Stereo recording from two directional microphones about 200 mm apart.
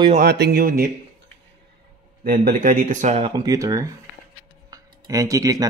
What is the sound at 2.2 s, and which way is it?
Speech, 45° right (ahead or behind).